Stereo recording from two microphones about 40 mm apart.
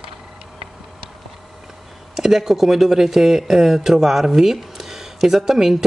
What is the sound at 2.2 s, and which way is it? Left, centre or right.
Speech, centre.